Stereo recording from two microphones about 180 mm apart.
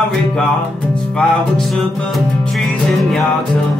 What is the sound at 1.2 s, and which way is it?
Music, centre (ahead or behind).